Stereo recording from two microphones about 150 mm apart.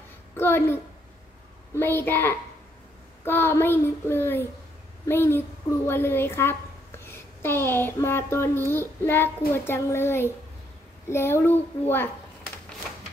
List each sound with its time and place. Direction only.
0.4 s child singing: 15° left (ahead or behind)
1.8 s child singing: 15° left (ahead or behind)
5.9 s a woman's voice: 15° left (ahead or behind)
9.5 s child singing: 20° left (ahead or behind)